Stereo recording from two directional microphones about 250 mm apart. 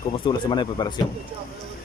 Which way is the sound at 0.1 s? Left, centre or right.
Centre.